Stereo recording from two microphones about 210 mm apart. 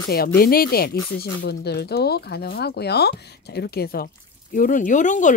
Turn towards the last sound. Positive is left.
turn(degrees=35)  # may be behind; listen again after turning